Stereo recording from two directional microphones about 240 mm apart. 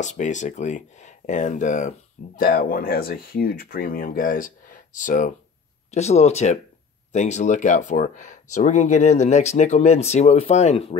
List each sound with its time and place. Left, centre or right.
0.0 s speech: left